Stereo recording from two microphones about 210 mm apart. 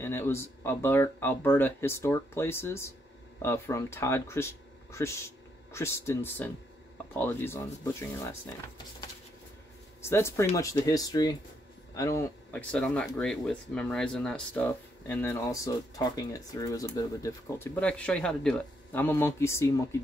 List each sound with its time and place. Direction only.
0.0 s speech: 10° left (ahead or behind)
10.0 s speech: 10° left (ahead or behind)